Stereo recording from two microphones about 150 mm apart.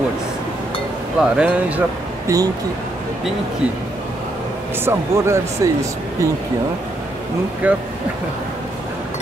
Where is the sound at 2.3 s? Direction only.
20° right (ahead or behind).